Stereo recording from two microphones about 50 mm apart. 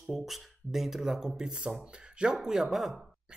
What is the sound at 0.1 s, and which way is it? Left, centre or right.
Speech, centre.